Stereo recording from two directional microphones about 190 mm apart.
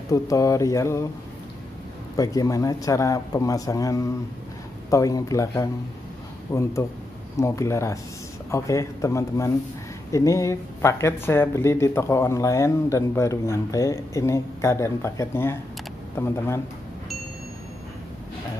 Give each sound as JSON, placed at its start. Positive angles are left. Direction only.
{"t": 0.1, "sound": "speech", "side_deg": 15}
{"t": 2.1, "sound": "speech", "side_deg": 20}